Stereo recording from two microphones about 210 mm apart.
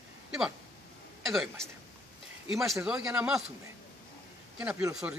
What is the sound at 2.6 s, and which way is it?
Speech, 5° right (ahead or behind).